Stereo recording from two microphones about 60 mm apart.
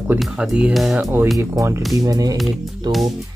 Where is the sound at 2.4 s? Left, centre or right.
Centre.